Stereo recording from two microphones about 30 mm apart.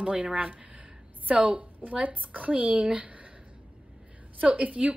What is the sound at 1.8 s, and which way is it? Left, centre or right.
A woman's voice, right.